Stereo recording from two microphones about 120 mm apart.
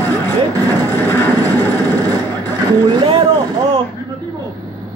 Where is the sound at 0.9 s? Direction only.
20° left (ahead or behind).